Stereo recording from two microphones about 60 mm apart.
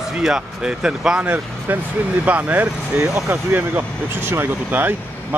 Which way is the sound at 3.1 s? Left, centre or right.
Right.